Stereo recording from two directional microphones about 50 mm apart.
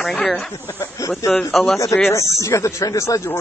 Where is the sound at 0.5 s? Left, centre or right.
Left.